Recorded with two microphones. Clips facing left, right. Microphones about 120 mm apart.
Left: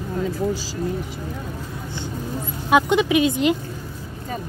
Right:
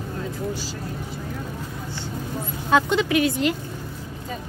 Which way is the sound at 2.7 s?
15° left (ahead or behind).